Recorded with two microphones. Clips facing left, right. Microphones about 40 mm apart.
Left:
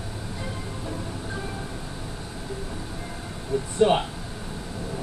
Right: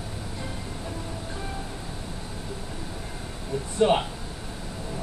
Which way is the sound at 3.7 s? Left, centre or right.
Centre.